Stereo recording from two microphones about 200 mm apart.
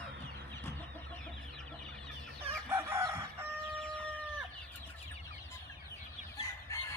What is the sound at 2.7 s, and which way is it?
Chicken, 15° right (ahead or behind).